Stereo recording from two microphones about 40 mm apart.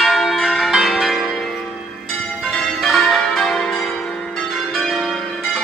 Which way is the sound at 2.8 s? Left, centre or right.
Centre.